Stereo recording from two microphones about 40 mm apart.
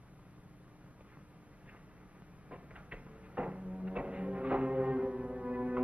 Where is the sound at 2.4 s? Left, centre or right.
Right.